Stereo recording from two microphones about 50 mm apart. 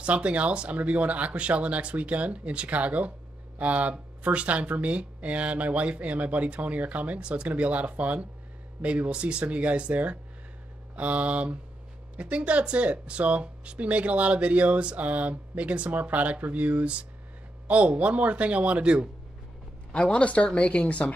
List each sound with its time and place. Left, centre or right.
0.0 s speech: right
19.9 s speech: left